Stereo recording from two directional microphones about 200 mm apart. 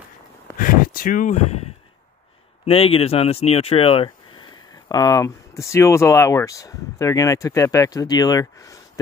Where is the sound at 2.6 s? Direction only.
30° left (ahead or behind).